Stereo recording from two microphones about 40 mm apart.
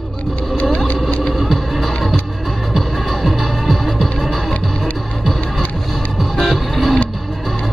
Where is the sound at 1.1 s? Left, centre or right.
Left.